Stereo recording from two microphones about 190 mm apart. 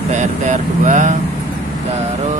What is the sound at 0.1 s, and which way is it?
Speech, 40° right (ahead or behind).